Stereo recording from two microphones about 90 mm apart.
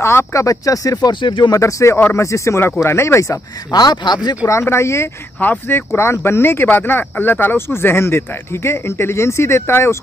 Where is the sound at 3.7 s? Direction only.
50° left (ahead or behind).